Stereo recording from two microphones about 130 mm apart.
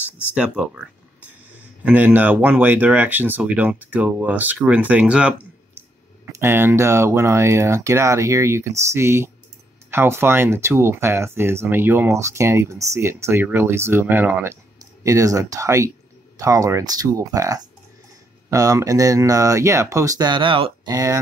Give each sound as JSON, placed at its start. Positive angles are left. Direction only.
{"t": 0.0, "sound": "speech", "side_deg": -10}
{"t": 20.9, "sound": "speech", "side_deg": -25}